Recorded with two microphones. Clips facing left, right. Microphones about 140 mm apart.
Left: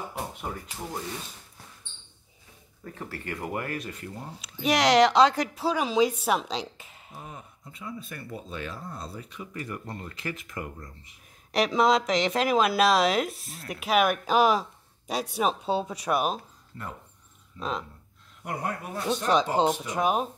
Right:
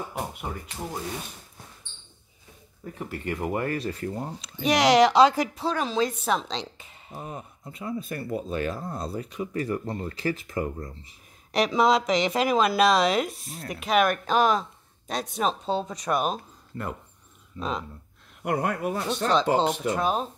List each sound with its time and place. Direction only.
0.2 s speech: 10° right (ahead or behind)
2.8 s speech: 15° right (ahead or behind)
4.6 s a woman's voice: centre (ahead or behind)
7.2 s speech: 45° right (ahead or behind)
11.5 s a woman's voice: centre (ahead or behind)
16.7 s speech: 65° right (ahead or behind)
17.6 s a woman's voice: centre (ahead or behind)
18.4 s speech: 75° right (ahead or behind)
19.5 s speech: 15° left (ahead or behind)